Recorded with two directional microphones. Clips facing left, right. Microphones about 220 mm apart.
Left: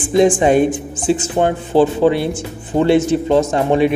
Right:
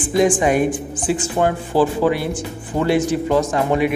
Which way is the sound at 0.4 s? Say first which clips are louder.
Left 4 dB; 25° left (ahead or behind).